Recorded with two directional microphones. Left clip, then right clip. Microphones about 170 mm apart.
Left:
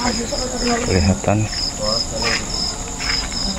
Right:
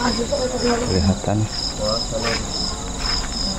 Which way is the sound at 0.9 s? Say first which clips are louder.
Left 3 dB; 20° left (ahead or behind).